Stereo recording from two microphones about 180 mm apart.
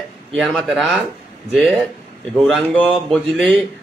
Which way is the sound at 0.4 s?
Centre (ahead or behind).